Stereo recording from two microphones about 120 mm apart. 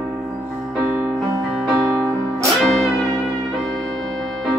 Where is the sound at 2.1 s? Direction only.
25° right (ahead or behind).